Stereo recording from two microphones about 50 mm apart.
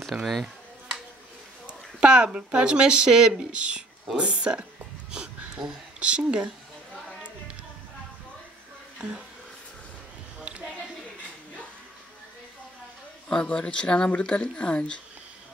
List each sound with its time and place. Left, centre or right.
0.1 s speech: centre
1.7 s speech: centre
8.9 s a sound: centre
13.3 s speech: centre